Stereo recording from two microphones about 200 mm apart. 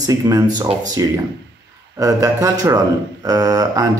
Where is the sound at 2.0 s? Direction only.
15° right (ahead or behind).